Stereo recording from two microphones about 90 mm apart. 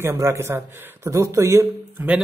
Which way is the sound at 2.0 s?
20° right (ahead or behind).